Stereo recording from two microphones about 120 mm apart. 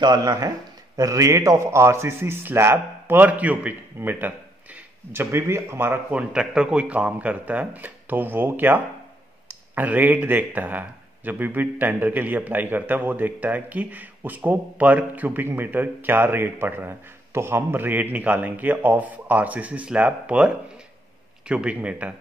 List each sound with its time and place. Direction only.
0.0 s a man's voice: 35° right (ahead or behind)
6.3 s speech: 5° right (ahead or behind)